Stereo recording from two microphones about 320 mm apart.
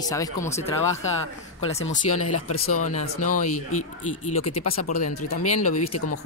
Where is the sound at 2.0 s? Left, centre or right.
Left.